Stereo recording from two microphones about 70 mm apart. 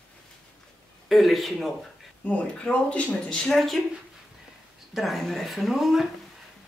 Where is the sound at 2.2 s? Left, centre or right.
Centre.